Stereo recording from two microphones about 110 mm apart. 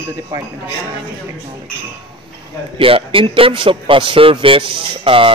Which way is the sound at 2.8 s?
55° right (ahead or behind).